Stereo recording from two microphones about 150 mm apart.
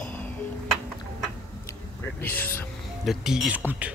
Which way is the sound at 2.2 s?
15° left (ahead or behind).